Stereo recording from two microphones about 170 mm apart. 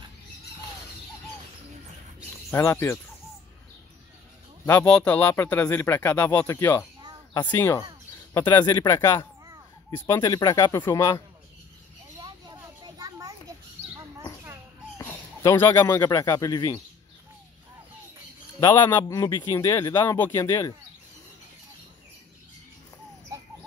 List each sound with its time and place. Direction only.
2.5 s speech: 15° left (ahead or behind)
4.6 s speech: 5° left (ahead or behind)
8.3 s speech: 25° left (ahead or behind)
12.2 s children playing: 25° right (ahead or behind)
15.0 s a sound: 15° left (ahead or behind)
16.1 s speech: 20° left (ahead or behind)
18.6 s speech: 15° left (ahead or behind)